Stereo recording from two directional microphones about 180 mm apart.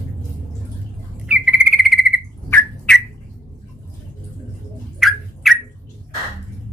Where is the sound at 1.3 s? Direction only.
5° right (ahead or behind).